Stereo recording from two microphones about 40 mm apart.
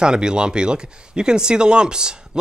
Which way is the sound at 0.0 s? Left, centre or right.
Right.